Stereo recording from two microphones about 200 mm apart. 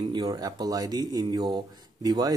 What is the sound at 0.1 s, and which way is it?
Speech, 20° right (ahead or behind).